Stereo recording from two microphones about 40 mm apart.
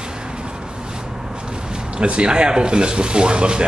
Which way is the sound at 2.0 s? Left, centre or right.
Right.